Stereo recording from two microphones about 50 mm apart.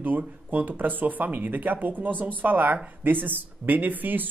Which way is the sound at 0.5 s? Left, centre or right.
Right.